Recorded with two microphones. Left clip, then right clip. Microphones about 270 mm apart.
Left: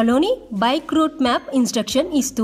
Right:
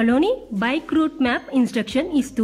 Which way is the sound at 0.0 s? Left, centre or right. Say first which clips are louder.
Left 1 dB; centre.